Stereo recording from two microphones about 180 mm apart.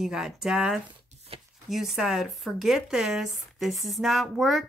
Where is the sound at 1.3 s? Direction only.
30° right (ahead or behind).